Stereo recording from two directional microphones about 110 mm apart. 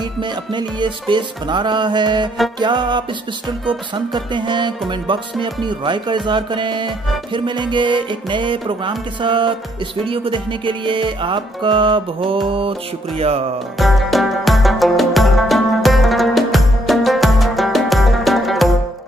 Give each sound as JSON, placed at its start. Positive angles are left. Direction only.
{"t": 0.2, "sound": "music", "side_deg": -45}
{"t": 13.7, "sound": "music", "side_deg": 0}